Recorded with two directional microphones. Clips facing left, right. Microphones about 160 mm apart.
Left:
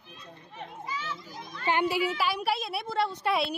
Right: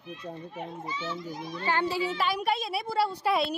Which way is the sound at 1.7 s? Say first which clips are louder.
Left 2 dB; 15° left (ahead or behind).